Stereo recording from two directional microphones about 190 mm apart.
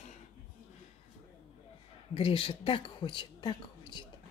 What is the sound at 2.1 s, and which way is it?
A woman's voice, 30° left (ahead or behind).